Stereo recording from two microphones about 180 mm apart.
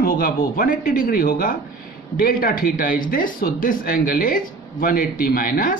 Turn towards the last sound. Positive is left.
turn(degrees=50)  # may be behind; listen again after turning